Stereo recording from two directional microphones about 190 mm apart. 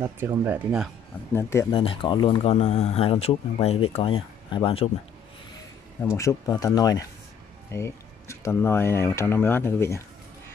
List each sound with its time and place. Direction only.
0.0 s speech: 10° right (ahead or behind)
1.3 s speech: 15° left (ahead or behind)
1.7 s speech: 30° left (ahead or behind)
6.1 s speech: 20° left (ahead or behind)